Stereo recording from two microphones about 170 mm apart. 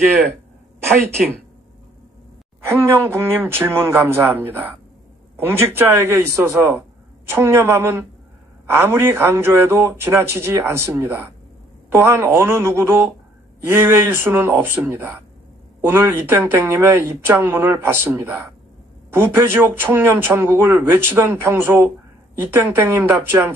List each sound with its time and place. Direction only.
2.6 s speech: 15° right (ahead or behind)